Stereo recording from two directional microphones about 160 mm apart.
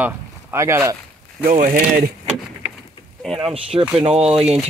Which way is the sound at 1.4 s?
55° right (ahead or behind).